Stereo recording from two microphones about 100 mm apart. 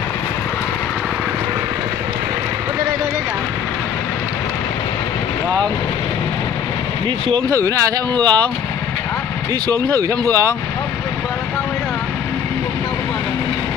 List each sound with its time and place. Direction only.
7.4 s speech: 35° right (ahead or behind)
8.1 s speech: 45° right (ahead or behind)
9.9 s speech: 35° right (ahead or behind)